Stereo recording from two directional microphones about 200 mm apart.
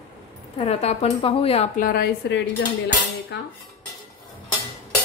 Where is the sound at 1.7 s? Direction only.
45° left (ahead or behind).